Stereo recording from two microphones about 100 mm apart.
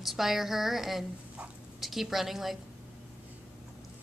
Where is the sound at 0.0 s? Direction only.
Centre (ahead or behind).